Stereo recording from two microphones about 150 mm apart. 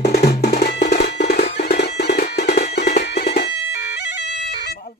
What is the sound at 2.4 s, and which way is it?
Music, 50° left (ahead or behind).